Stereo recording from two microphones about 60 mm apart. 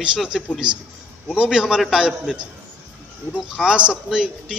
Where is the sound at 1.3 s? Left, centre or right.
Centre.